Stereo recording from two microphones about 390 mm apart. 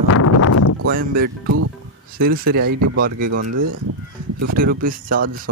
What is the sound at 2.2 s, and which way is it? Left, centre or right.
Speech, right.